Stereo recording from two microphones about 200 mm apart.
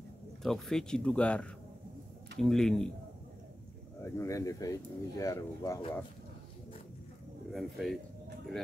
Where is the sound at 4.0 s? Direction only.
15° left (ahead or behind).